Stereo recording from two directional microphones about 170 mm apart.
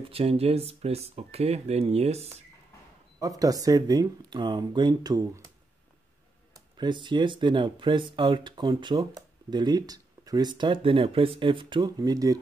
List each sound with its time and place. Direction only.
0.0 s speech: 35° right (ahead or behind)
3.2 s speech: 20° right (ahead or behind)
6.5 s speech: 25° right (ahead or behind)